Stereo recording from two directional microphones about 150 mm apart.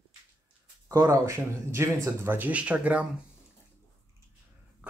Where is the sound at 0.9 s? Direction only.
20° right (ahead or behind).